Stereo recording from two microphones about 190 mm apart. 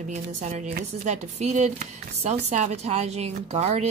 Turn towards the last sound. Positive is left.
turn(degrees=-35)  # may be behind; listen again after turning